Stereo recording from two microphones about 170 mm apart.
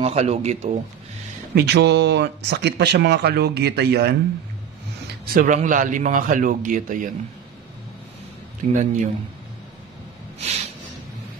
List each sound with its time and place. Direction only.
0.0 s speech: 40° right (ahead or behind)
1.5 s speech: 75° right (ahead or behind)
5.0 s a man's voice: 60° right (ahead or behind)
8.7 s a man's voice: 45° right (ahead or behind)
10.4 s a sound: 40° right (ahead or behind)